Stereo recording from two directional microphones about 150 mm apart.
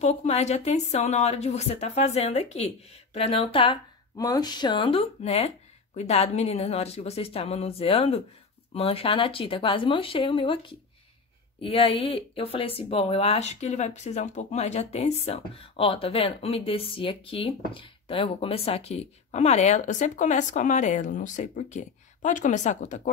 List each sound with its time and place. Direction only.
0.0 s speech: 45° left (ahead or behind)
4.2 s speech: 25° left (ahead or behind); by 23.0 s 55° left (ahead or behind)